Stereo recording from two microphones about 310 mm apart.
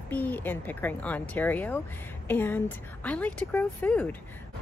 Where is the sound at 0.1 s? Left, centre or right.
Centre.